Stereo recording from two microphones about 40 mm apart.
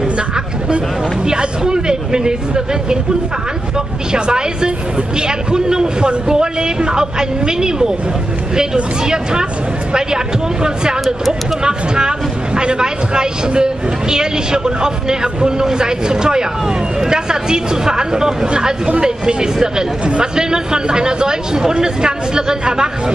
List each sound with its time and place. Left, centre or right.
1.2 s speech: centre
9.0 s speech: centre